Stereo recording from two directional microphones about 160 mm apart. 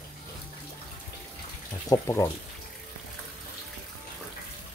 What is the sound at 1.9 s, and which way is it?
Speech, 15° left (ahead or behind).